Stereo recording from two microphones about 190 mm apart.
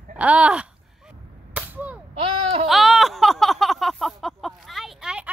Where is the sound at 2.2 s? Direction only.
30° right (ahead or behind).